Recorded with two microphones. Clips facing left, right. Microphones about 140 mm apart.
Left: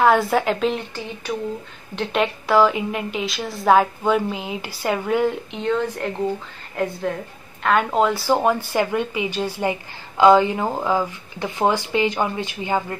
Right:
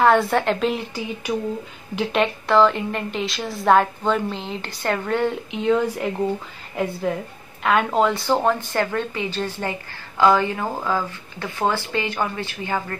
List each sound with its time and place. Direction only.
0.0 s a woman's voice: centre (ahead or behind); by 12.8 s 15° left (ahead or behind)